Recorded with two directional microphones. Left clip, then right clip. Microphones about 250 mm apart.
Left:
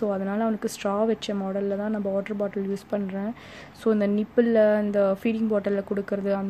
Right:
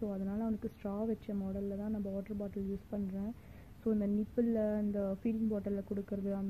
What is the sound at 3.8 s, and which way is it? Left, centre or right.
A woman's voice, centre.